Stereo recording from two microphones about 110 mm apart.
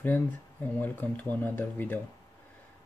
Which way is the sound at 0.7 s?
15° left (ahead or behind).